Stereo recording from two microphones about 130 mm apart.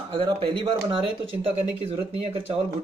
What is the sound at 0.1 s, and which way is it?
Speech, 45° right (ahead or behind).